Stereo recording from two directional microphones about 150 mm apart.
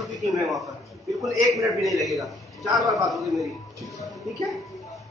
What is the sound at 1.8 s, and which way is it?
A man's voice, centre (ahead or behind).